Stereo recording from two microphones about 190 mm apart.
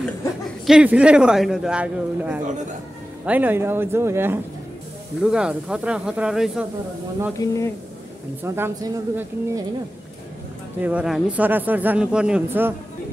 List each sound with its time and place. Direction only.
0.7 s a man's voice: 5° right (ahead or behind)
7.3 s speech: 15° left (ahead or behind)
8.4 s a man's voice: 10° right (ahead or behind)
10.8 s a man's voice: 5° right (ahead or behind)